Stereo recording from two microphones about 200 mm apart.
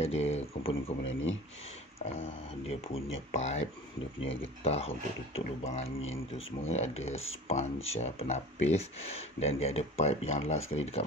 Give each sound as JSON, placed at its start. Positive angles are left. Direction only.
{"t": 0.0, "sound": "speech", "side_deg": 30}
{"t": 1.0, "sound": "speech", "side_deg": 70}
{"t": 3.3, "sound": "speech", "side_deg": 35}